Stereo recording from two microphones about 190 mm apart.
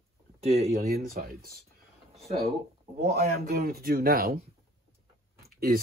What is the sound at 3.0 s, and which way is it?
Speech, 55° right (ahead or behind).